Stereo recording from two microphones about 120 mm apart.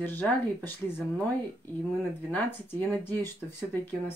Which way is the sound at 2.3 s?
15° left (ahead or behind).